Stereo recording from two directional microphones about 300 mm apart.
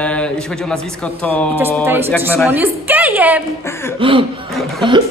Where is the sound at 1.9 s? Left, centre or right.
Centre.